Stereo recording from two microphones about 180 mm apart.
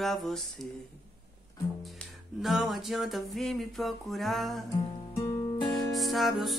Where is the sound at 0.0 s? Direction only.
Centre (ahead or behind).